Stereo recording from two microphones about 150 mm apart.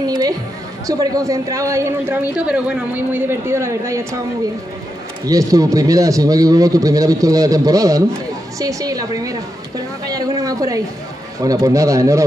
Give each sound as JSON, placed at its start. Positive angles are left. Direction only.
{"t": 0.0, "sound": "a sound", "side_deg": -25}
{"t": 0.8, "sound": "a man's voice", "side_deg": -25}
{"t": 2.3, "sound": "a man's voice", "side_deg": -5}
{"t": 5.2, "sound": "a man's voice", "side_deg": -25}